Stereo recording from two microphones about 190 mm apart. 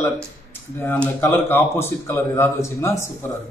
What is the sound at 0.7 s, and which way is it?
A man's voice, 10° left (ahead or behind).